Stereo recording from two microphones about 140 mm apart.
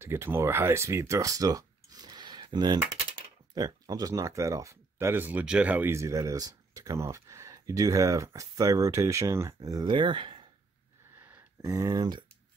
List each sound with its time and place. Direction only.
0.0 s speech: 20° right (ahead or behind); by 10.4 s 35° right (ahead or behind)
11.1 s a sound: 15° right (ahead or behind)
11.6 s speech: 25° right (ahead or behind)